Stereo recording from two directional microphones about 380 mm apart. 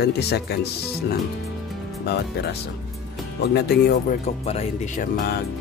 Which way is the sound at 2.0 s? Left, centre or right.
Left.